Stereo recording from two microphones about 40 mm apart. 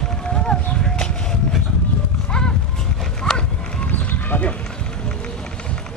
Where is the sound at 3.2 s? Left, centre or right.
Centre.